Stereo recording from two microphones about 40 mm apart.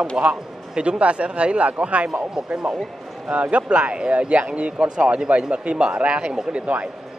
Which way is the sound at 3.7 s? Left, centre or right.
Right.